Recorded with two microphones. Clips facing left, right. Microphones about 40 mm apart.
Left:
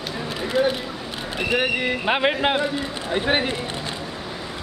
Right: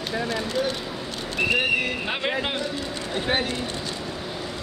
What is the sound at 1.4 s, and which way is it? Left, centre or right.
Speech, centre.